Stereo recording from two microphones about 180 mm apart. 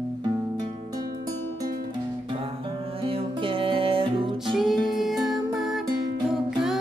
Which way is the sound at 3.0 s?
30° right (ahead or behind).